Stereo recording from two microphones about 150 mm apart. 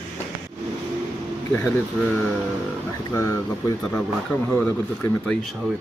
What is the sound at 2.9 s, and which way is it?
Speech, 20° left (ahead or behind).